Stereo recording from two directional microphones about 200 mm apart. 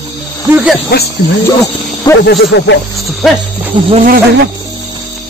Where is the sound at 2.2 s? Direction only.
55° left (ahead or behind).